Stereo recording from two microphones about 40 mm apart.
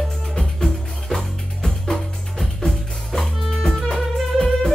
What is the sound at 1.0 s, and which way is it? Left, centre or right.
Music, centre.